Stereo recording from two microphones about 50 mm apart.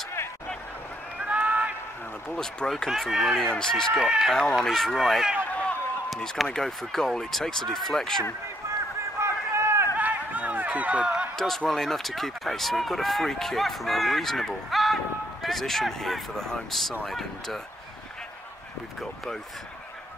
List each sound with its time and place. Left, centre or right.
1.2 s run: right
2.2 s speech: centre
3.1 s speech: centre
3.5 s speech: centre
3.9 s speech: centre
4.6 s speech: centre
6.4 s speech: centre
8.6 s run: right
9.2 s a sound: right
9.9 s a sound: right
11.3 s speech: centre